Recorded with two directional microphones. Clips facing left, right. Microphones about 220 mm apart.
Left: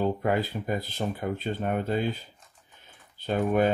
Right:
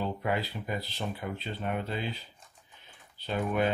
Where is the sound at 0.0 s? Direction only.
45° left (ahead or behind).